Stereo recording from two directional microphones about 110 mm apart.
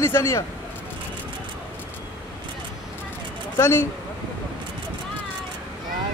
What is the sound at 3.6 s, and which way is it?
Speech, 25° left (ahead or behind).